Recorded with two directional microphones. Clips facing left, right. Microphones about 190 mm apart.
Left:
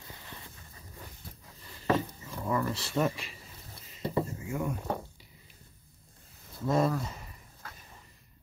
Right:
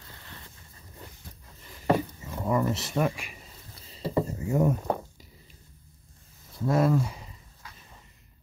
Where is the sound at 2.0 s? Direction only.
15° right (ahead or behind).